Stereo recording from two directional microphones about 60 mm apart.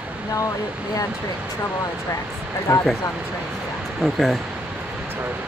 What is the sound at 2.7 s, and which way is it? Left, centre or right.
Speech, left.